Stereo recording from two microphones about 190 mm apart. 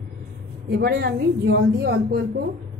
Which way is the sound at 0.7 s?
55° right (ahead or behind).